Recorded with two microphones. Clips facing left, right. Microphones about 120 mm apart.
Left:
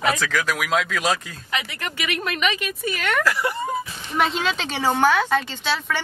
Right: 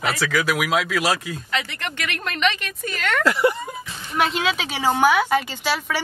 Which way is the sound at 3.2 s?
25° right (ahead or behind).